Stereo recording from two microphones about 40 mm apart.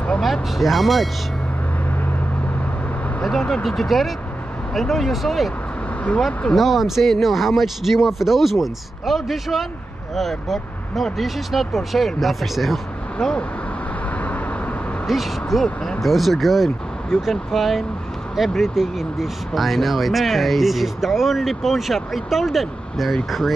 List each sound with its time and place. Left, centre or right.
0.2 s speech: centre
3.3 s speech: centre
6.5 s speech: centre
14.1 s vehicle: left
15.0 s speech: centre